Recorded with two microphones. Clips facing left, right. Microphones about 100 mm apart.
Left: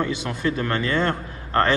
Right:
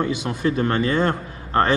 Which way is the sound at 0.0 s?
15° right (ahead or behind).